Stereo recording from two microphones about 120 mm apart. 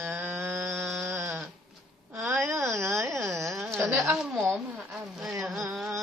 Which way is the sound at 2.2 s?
20° right (ahead or behind).